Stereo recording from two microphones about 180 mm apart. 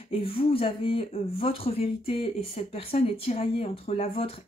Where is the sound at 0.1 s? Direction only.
30° left (ahead or behind).